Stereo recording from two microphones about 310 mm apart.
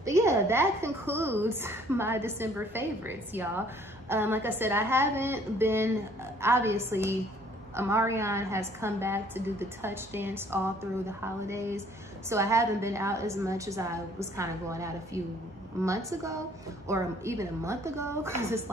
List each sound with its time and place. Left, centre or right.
0.0 s a woman's voice: centre